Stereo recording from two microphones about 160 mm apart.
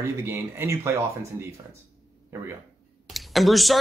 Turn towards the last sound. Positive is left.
turn(degrees=0)  # may be behind; listen again after turning